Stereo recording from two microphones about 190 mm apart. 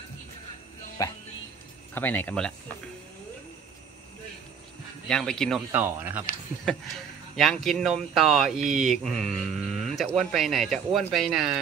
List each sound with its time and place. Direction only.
1.0 s speech: 20° left (ahead or behind)
5.0 s speech: 5° left (ahead or behind)
5.7 s speech: 10° right (ahead or behind)
7.3 s speech: centre (ahead or behind)